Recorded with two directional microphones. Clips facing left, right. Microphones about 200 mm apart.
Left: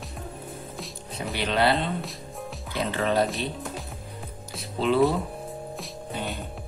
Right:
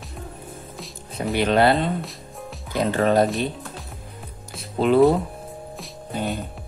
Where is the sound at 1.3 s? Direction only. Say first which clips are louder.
Right 6 dB; 50° right (ahead or behind).